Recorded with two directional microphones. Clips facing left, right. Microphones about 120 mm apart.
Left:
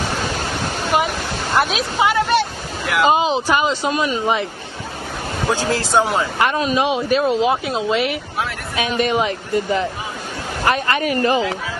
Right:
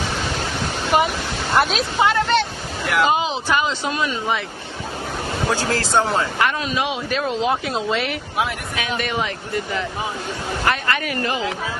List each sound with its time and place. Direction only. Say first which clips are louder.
0.9 s speech: right 1 dB; centre (ahead or behind)
3.1 s speech: left 4 dB; 15° left (ahead or behind)
5.5 s speech: left 3 dB; 15° left (ahead or behind)
6.4 s speech: left 4 dB; 25° left (ahead or behind)
7.1 s speech: left 4 dB; 10° left (ahead or behind)
8.7 s speech: left 7 dB; 20° left (ahead or behind)
10.7 s speech: left 5 dB; 25° left (ahead or behind)